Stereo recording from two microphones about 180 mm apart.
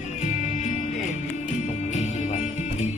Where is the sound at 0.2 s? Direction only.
40° left (ahead or behind).